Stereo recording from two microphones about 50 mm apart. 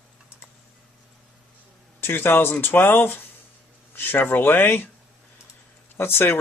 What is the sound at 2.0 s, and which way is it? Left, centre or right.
Speech, left.